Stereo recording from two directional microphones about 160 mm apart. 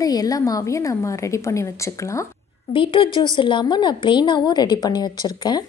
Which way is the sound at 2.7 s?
30° left (ahead or behind).